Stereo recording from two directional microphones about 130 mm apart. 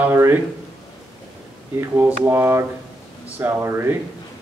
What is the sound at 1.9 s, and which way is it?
Speech, 15° right (ahead or behind).